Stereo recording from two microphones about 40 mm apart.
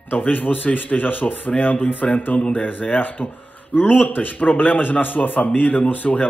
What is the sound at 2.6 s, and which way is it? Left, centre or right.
A man's voice, left.